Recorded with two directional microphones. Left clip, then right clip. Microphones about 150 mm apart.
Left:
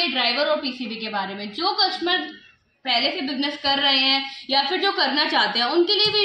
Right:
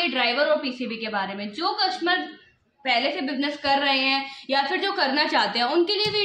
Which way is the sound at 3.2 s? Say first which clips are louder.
Left 1 dB; 20° right (ahead or behind).